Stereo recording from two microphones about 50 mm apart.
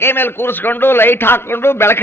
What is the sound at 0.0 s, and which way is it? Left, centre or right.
A man's voice, left.